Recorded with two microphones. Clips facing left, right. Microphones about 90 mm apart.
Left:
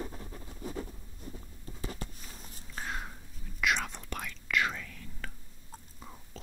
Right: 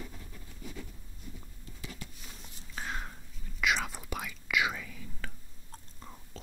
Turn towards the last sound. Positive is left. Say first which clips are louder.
# left 1 dB
turn(degrees=5)  # may be behind; listen again after turning